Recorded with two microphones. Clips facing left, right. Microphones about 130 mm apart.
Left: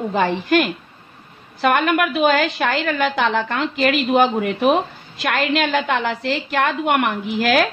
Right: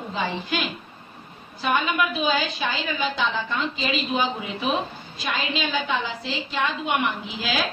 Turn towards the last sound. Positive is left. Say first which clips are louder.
# left 9 dB
turn(degrees=65)  # may be behind; listen again after turning